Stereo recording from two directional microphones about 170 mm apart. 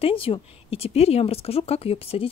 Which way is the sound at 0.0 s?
35° left (ahead or behind).